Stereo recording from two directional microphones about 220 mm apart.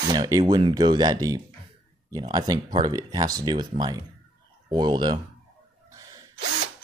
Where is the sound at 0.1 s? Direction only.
20° right (ahead or behind).